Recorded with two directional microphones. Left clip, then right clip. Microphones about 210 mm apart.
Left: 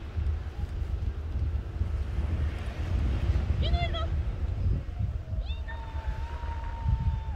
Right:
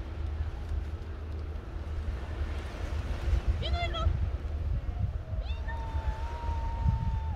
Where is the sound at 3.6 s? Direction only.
20° right (ahead or behind).